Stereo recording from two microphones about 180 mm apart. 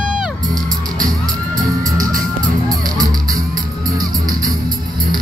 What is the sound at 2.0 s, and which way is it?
Music, 50° right (ahead or behind).